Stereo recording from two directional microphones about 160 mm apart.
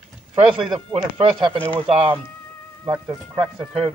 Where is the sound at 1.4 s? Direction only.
35° right (ahead or behind).